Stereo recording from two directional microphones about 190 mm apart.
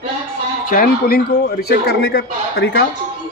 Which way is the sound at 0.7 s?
50° left (ahead or behind).